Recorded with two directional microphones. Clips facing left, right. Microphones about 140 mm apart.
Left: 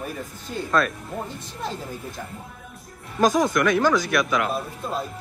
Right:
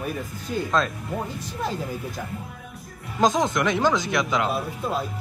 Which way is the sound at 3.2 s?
20° right (ahead or behind).